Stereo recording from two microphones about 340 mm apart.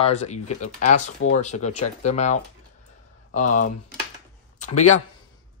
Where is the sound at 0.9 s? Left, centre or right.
Left.